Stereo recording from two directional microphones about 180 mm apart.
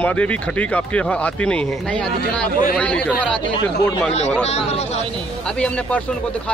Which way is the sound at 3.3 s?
25° left (ahead or behind).